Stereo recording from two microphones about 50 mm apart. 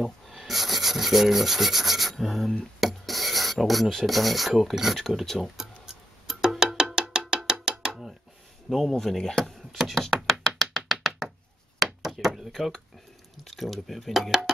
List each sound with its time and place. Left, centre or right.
0.0 s rub: centre
2.8 s filing: centre
5.4 s music: centre
7.6 s a sound: centre
8.6 s speech: centre
9.7 s a sound: centre
10.9 s tap: centre
11.8 s a sound: centre
13.4 s speech: centre